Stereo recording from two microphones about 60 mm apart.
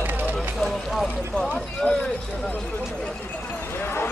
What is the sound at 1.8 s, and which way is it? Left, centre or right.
Clip-clop, left.